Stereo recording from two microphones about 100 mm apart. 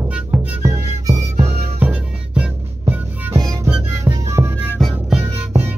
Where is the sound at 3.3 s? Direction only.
35° right (ahead or behind).